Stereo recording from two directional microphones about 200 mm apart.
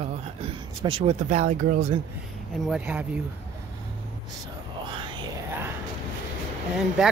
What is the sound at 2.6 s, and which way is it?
Speech, 5° right (ahead or behind).